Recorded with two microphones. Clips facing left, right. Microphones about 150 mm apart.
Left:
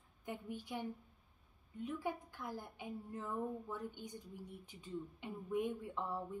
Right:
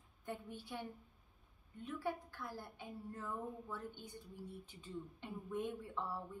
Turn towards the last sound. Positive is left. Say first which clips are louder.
# left 2 dB
turn(degrees=15)  # may be behind; listen again after turning